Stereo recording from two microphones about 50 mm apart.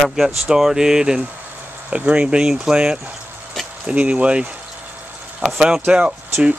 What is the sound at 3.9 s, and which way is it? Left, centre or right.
Speech, right.